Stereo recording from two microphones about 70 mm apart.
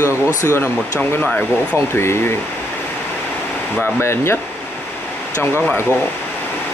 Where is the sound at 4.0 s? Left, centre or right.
Left.